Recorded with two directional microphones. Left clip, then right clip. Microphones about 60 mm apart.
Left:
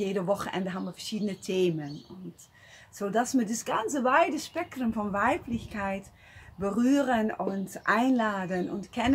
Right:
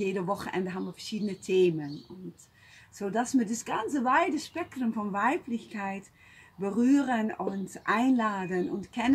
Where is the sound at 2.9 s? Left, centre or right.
Left.